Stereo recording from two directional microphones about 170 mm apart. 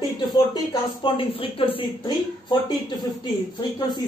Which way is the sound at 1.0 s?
35° left (ahead or behind).